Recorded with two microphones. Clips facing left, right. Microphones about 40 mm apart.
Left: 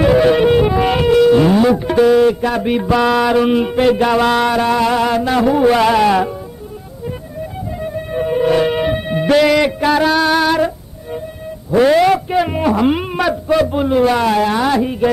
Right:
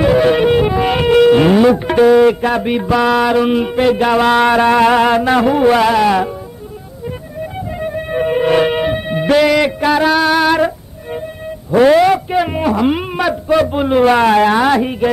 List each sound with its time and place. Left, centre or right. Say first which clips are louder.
0.0 s music: even; centre
1.0 s moo: right 2 dB; right
1.6 s music: right 2 dB; right
2.5 s music: right 1 dB; centre
4.5 s a sound: right 4 dB; right
5.7 s a sound: right 1 dB; centre
7.7 s music: right 2 dB; right
8.7 s music: right 1 dB; centre
11.7 s music: right 2 dB; centre
13.8 s speech: right 5 dB; right